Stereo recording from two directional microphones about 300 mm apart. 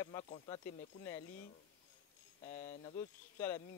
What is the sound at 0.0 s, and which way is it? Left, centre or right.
Speech, centre.